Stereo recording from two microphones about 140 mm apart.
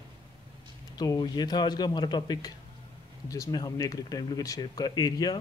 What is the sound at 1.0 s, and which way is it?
Speech, 30° left (ahead or behind).